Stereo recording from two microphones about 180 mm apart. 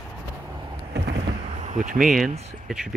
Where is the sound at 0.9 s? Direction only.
70° right (ahead or behind).